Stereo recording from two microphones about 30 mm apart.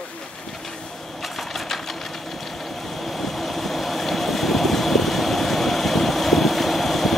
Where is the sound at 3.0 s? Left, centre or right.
Centre.